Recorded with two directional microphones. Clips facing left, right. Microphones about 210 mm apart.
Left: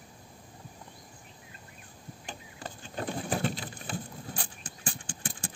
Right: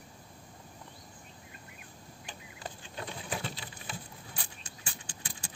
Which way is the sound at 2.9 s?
50° left (ahead or behind).